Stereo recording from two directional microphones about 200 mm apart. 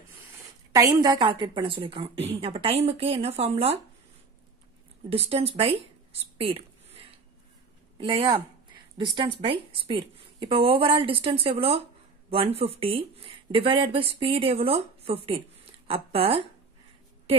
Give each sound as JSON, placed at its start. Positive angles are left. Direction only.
{"t": 0.7, "sound": "speech", "side_deg": -20}
{"t": 5.1, "sound": "speech", "side_deg": -30}
{"t": 6.3, "sound": "a sound", "side_deg": -30}
{"t": 8.0, "sound": "a woman's voice", "side_deg": -25}